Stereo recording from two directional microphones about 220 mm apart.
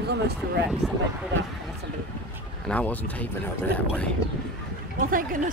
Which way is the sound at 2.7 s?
5° left (ahead or behind).